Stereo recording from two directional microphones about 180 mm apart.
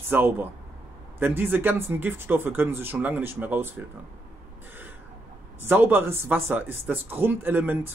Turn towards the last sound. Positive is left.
turn(degrees=-10)  # may be behind; listen again after turning